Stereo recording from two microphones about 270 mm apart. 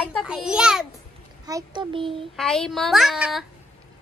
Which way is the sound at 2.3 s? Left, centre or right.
Centre.